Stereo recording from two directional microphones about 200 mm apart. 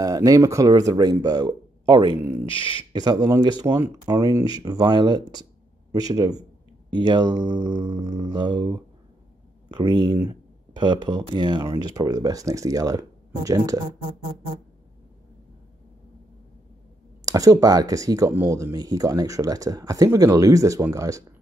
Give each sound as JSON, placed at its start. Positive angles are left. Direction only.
{"t": 0.0, "sound": "speech", "side_deg": -15}
{"t": 2.4, "sound": "speech", "side_deg": 25}
{"t": 2.9, "sound": "speech", "side_deg": -20}
{"t": 17.2, "sound": "speech", "side_deg": -15}